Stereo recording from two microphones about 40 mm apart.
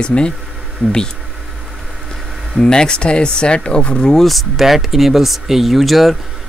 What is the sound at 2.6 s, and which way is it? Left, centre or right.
Speech, centre.